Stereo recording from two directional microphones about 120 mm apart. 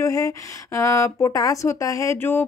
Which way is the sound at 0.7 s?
25° left (ahead or behind).